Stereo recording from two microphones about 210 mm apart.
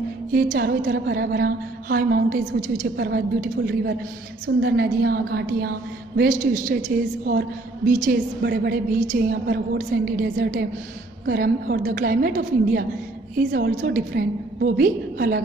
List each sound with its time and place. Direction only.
0.3 s a woman's voice: 45° right (ahead or behind)
9.0 s a woman's voice: 40° right (ahead or behind)